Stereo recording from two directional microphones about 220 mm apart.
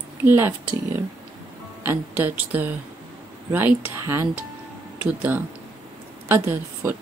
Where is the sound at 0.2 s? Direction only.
10° right (ahead or behind).